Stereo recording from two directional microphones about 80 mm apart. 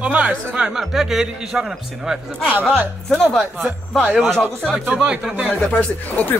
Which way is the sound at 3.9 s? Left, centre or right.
Centre.